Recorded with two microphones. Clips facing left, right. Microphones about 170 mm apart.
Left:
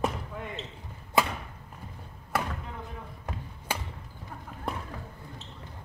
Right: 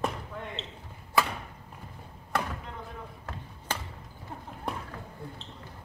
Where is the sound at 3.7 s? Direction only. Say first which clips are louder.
Left 1 dB; 10° left (ahead or behind).